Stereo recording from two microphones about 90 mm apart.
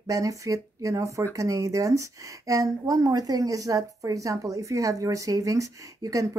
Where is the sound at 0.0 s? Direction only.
40° right (ahead or behind).